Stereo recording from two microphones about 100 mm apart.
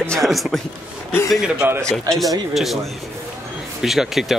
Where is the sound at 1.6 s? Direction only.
15° right (ahead or behind).